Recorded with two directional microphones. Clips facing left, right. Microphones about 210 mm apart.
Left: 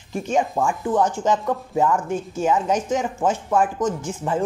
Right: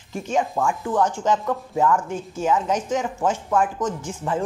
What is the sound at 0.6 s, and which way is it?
Speech, 15° left (ahead or behind).